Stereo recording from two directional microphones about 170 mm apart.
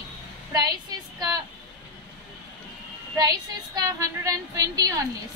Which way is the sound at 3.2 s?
20° right (ahead or behind).